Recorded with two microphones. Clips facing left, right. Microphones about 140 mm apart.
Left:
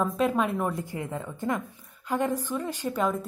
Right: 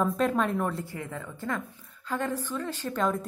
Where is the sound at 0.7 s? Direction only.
20° left (ahead or behind).